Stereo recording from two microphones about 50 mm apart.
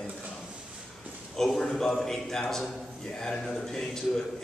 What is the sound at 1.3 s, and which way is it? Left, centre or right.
A man's voice, centre.